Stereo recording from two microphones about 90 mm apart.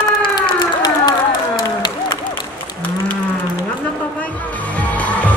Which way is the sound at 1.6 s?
55° left (ahead or behind).